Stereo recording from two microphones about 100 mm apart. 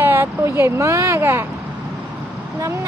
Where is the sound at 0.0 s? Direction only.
25° right (ahead or behind).